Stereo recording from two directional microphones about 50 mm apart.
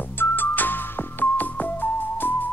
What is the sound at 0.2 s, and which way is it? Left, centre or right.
Music, left.